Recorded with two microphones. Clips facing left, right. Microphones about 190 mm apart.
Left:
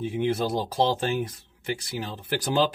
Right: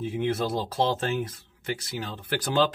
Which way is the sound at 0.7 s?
10° left (ahead or behind).